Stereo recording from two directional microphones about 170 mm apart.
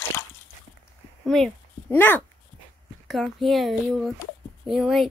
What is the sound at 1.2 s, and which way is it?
Speech, 5° left (ahead or behind).